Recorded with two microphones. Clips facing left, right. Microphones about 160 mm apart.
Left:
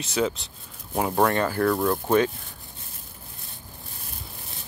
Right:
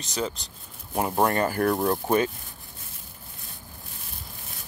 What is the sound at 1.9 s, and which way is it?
Speech, 5° right (ahead or behind).